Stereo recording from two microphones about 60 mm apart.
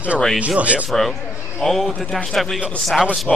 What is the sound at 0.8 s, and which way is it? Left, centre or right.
Speech, centre.